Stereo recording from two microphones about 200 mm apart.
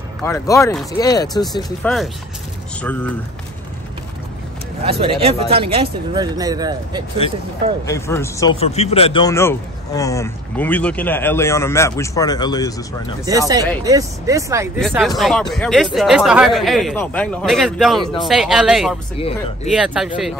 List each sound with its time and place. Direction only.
0.2 s speech: 15° left (ahead or behind)
1.8 s speech: 5° left (ahead or behind)
4.8 s speech: 30° right (ahead or behind)
7.8 s speech: 15° left (ahead or behind)
8.5 s speech: 30° left (ahead or behind)
9.3 s speech: 15° left (ahead or behind)
13.3 s speech: 15° right (ahead or behind)
14.8 s speech: centre (ahead or behind)
19.1 s speech: 30° left (ahead or behind)
19.7 s speech: 5° right (ahead or behind)